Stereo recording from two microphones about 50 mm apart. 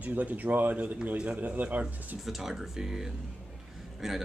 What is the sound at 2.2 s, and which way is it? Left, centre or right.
A man's voice, centre.